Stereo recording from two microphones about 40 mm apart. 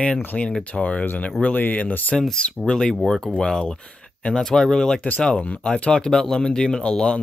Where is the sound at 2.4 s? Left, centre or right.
Left.